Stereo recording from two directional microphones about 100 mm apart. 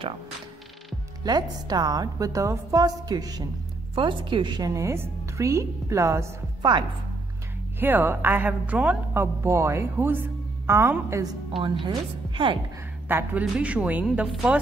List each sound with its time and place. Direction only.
1.2 s a woman's voice: 40° right (ahead or behind)
3.9 s a woman's voice: 55° right (ahead or behind); by 6.3 s 30° right (ahead or behind)
7.8 s a woman's voice: 20° right (ahead or behind)
9.1 s a woman's voice: 25° right (ahead or behind)
11.8 s a woman's voice: 55° right (ahead or behind)
13.1 s a woman's voice: 15° right (ahead or behind)
14.0 s speech: 5° right (ahead or behind)